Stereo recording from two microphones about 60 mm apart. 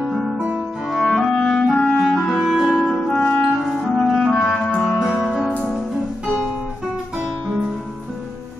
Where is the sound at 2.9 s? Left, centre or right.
Centre.